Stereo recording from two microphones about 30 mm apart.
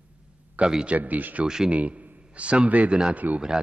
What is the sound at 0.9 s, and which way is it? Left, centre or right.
Speech, right.